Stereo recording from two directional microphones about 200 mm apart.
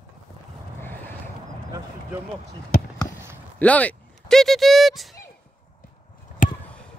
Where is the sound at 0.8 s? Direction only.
10° left (ahead or behind).